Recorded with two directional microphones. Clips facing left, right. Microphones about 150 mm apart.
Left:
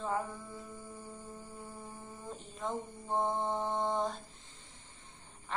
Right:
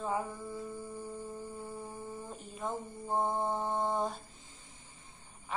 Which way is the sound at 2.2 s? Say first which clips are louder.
Left 2 dB; 10° right (ahead or behind).